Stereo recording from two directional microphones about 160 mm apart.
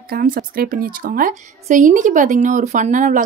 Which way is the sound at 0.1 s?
65° right (ahead or behind).